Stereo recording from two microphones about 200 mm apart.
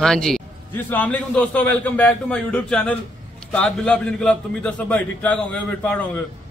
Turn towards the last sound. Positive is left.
turn(degrees=5)  # may be behind; listen again after turning